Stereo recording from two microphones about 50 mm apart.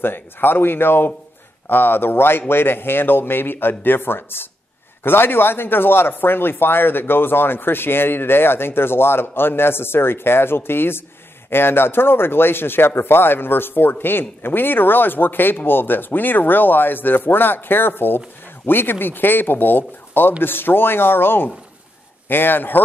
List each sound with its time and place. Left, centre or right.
0.0 s speech: left